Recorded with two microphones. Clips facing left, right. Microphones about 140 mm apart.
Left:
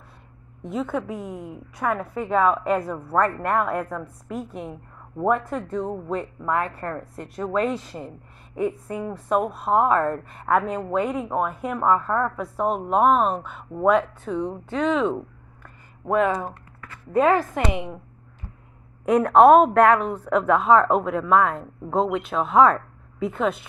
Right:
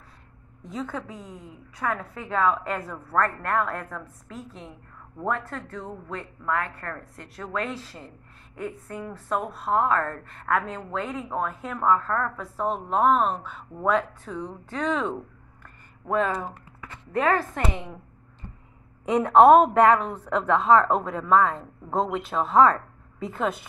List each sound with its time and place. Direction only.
0.7 s a woman's voice: 10° left (ahead or behind)
1.1 s a woman's voice: 65° left (ahead or behind)
1.8 s a woman's voice: 15° left (ahead or behind)
4.0 s a woman's voice: 65° left (ahead or behind)
5.1 s a woman's voice: 20° left (ahead or behind)
14.3 s a woman's voice: 30° left (ahead or behind)
14.8 s a woman's voice: 5° left (ahead or behind)
15.1 s a sound: 15° left (ahead or behind)
17.1 s a woman's voice: 15° left (ahead or behind)
19.0 s a woman's voice: centre (ahead or behind)